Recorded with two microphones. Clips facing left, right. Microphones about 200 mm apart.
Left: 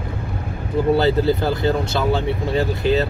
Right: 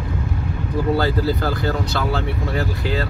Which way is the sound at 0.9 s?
20° left (ahead or behind).